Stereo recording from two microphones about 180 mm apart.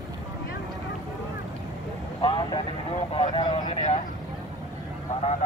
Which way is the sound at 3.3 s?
25° left (ahead or behind).